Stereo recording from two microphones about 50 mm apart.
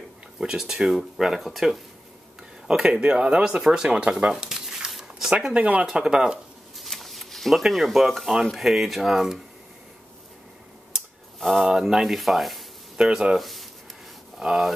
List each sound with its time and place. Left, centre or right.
0.4 s speech: centre
2.7 s speech: centre
4.3 s squish: centre
5.6 s speech: right
5.9 s speech: centre
6.8 s a sound: centre
8.1 s speech: centre
11.3 s speech: centre
12.9 s speech: centre
13.4 s a sound: centre
14.4 s speech: centre